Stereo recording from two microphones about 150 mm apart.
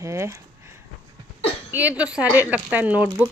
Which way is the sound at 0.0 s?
20° right (ahead or behind).